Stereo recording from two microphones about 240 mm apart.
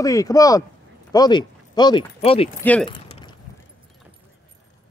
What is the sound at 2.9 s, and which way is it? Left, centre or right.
Keys jangling, left.